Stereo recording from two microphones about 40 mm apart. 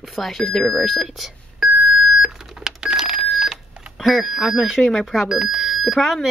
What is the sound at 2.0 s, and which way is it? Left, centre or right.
Beep, centre.